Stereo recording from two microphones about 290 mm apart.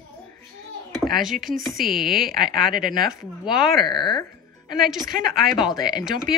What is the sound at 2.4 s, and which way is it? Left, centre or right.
Speech, right.